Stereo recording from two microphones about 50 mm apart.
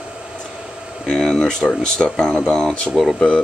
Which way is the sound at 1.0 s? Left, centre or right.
Centre.